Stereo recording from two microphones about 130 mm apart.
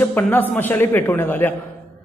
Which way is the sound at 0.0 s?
15° left (ahead or behind).